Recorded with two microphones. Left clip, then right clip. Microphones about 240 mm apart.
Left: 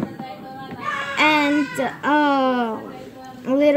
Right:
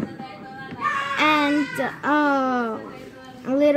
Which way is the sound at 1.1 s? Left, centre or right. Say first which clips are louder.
Left 3 dB; centre.